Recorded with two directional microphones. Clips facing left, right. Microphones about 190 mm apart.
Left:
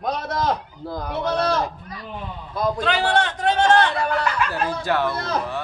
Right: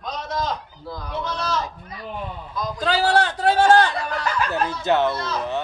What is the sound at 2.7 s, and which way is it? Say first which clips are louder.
A man's voice: right 4 dB; 35° right (ahead or behind).